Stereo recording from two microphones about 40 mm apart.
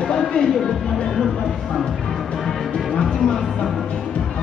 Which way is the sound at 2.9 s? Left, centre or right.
Centre.